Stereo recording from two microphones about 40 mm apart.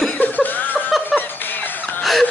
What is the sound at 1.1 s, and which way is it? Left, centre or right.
Music, left.